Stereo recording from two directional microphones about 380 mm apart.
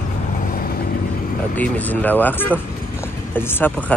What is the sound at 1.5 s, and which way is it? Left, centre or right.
Speech, centre.